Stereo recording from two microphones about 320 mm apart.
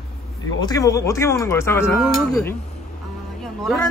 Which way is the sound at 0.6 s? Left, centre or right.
Centre.